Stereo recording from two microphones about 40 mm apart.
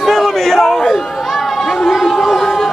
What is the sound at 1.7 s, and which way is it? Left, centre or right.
Speech, centre.